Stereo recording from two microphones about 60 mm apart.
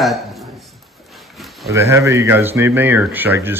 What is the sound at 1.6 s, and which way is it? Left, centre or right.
Speech, right.